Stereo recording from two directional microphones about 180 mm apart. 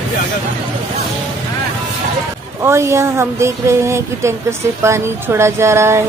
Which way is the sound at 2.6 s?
15° right (ahead or behind).